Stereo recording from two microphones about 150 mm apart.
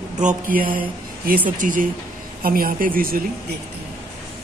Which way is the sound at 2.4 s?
75° right (ahead or behind).